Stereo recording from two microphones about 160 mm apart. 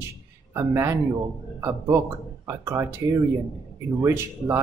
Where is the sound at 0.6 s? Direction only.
15° right (ahead or behind).